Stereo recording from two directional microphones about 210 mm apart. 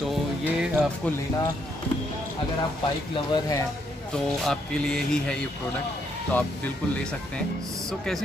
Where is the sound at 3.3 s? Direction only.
15° left (ahead or behind).